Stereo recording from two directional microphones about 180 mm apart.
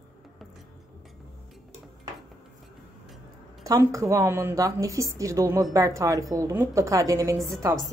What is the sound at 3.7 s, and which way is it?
A woman's voice, 20° right (ahead or behind).